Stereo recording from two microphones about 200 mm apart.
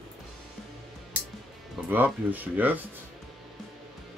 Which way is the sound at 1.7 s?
10° right (ahead or behind).